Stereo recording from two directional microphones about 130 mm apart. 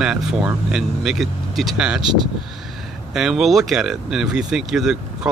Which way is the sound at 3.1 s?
5° right (ahead or behind).